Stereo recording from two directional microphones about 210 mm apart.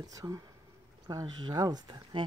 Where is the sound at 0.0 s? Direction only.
15° right (ahead or behind).